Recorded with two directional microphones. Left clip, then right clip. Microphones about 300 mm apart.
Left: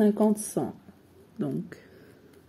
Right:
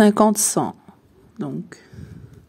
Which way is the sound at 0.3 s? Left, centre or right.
Right.